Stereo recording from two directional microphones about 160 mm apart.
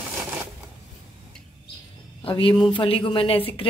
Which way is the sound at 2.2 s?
35° left (ahead or behind).